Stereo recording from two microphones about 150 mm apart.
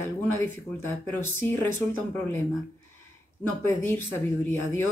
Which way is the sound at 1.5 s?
15° left (ahead or behind).